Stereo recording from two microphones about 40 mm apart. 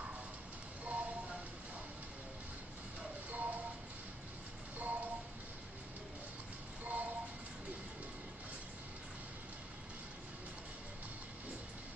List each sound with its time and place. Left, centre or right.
0.8 s music: right
3.3 s music: right
4.7 s music: right
6.8 s music: right